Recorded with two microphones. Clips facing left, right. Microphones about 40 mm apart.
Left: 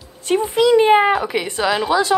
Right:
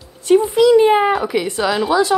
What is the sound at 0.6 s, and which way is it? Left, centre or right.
Speech, centre.